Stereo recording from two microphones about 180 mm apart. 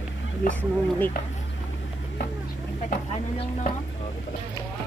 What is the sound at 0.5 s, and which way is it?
Speech, 10° left (ahead or behind).